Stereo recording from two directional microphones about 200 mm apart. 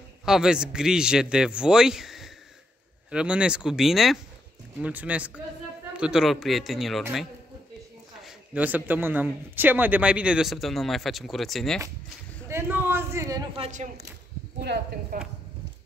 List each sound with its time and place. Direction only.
0.2 s a man's voice: 5° right (ahead or behind)
12.4 s a sound: 10° right (ahead or behind)
13.6 s speech: 40° right (ahead or behind)
14.6 s speech: 50° right (ahead or behind)